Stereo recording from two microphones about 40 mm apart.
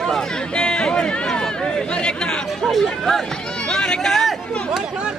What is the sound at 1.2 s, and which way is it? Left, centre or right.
Chatter, centre.